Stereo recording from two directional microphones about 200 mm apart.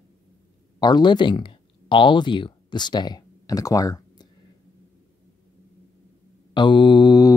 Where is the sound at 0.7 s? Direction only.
20° left (ahead or behind).